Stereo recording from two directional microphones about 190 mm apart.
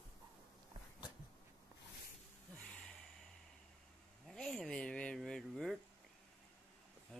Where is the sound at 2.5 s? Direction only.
5° left (ahead or behind).